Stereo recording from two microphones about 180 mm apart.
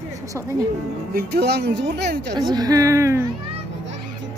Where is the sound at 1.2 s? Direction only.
65° right (ahead or behind).